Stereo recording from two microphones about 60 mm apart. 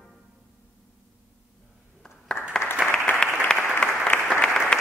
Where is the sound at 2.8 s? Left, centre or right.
Centre.